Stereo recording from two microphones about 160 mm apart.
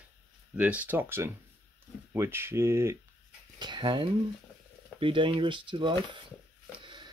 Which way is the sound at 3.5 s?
30° right (ahead or behind).